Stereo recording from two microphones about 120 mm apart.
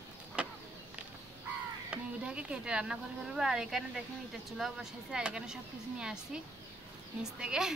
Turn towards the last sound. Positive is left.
turn(degrees=-5)  # may be behind; listen again after turning